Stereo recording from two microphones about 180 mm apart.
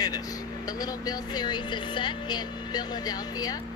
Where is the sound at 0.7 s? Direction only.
20° left (ahead or behind).